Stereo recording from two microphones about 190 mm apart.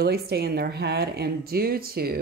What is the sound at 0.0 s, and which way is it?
Speech, 55° right (ahead or behind).